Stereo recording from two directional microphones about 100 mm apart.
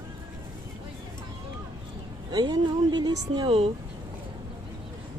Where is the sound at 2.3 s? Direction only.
45° right (ahead or behind).